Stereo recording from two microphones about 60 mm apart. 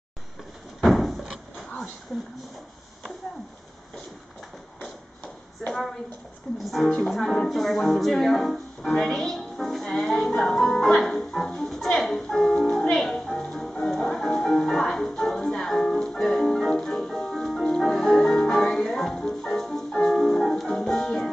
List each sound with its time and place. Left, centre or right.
0.8 s door: centre
5.7 s a woman's voice: centre
6.6 s music: centre
10.3 s speech: centre
12.9 s music: centre